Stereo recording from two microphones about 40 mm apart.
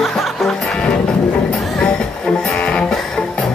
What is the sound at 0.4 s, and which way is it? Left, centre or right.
Music, centre.